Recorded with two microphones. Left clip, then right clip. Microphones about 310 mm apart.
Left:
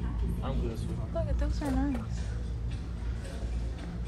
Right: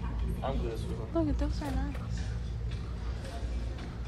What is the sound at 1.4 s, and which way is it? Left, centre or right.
Speech, centre.